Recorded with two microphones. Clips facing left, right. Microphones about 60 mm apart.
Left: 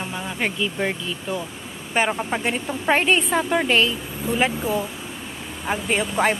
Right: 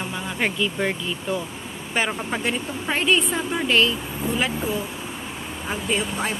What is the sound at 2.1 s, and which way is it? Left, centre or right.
Speech, centre.